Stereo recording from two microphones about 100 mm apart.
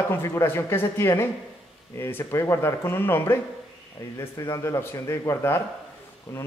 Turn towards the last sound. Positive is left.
turn(degrees=30)  # may be behind; listen again after turning